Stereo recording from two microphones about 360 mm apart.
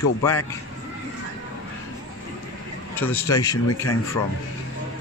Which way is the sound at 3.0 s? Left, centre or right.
Centre.